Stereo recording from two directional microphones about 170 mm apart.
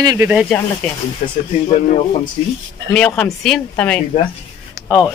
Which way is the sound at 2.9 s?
5° left (ahead or behind).